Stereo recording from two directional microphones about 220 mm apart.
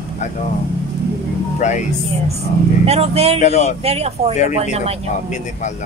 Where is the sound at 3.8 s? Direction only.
25° right (ahead or behind).